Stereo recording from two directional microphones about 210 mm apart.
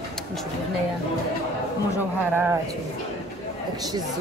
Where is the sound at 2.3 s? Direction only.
10° right (ahead or behind).